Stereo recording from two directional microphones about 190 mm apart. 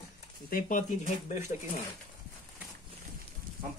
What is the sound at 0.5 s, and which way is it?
Speech, 45° left (ahead or behind).